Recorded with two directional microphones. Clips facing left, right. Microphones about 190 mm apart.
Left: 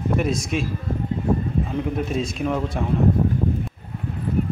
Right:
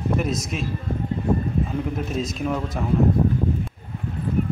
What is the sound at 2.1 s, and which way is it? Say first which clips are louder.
Speech: even; centre (ahead or behind).